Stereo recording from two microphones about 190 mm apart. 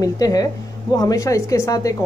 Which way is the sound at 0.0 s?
20° left (ahead or behind).